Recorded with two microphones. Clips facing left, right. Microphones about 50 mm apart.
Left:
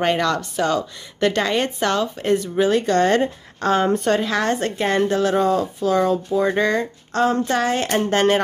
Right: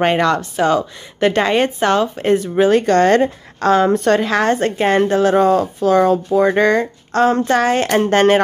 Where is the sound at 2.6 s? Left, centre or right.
Right.